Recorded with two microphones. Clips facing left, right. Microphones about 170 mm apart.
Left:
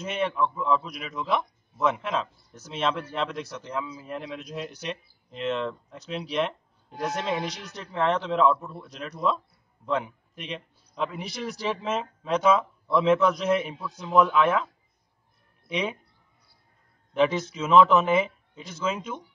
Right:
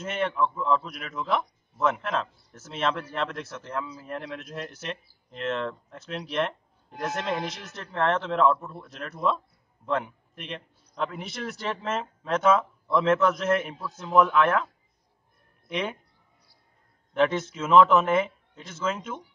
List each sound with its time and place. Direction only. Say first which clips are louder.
0.0 s a man's voice: even; centre (ahead or behind)
17.1 s a man's voice: left 1 dB; centre (ahead or behind)